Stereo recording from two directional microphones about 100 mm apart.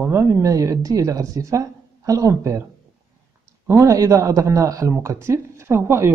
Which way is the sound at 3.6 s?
30° right (ahead or behind).